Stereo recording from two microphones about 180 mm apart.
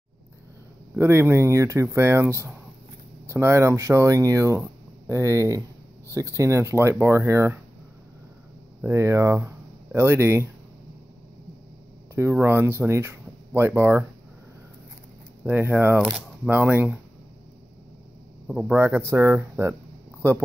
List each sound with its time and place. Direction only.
0.9 s speech: 15° right (ahead or behind)
8.8 s speech: 15° right (ahead or behind)
12.2 s speech: 15° right (ahead or behind)
15.4 s speech: 10° right (ahead or behind)
18.5 s a man's voice: centre (ahead or behind)
18.8 s speech: 10° right (ahead or behind)